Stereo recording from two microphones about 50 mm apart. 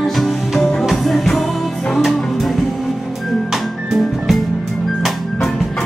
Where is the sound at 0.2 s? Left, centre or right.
Centre.